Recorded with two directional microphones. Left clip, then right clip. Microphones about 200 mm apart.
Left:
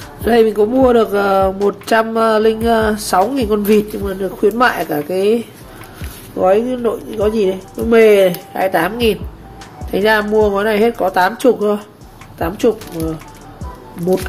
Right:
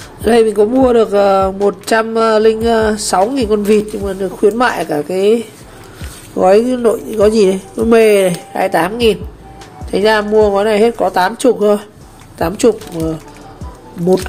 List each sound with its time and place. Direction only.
0.2 s speech: 15° right (ahead or behind)
6.3 s speech: 25° right (ahead or behind)
14.0 s speech: centre (ahead or behind)